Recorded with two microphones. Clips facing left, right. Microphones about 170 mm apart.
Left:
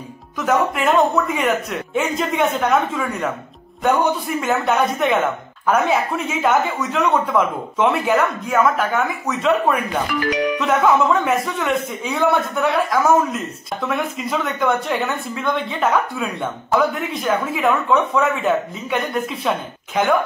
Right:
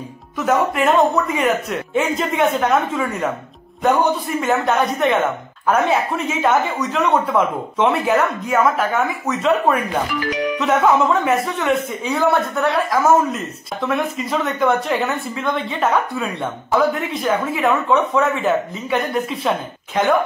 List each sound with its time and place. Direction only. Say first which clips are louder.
0.5 s speech: right 1 dB; centre (ahead or behind)
10.2 s speech: left 2 dB; 70° left (ahead or behind)
10.6 s speech: right 2 dB; centre (ahead or behind)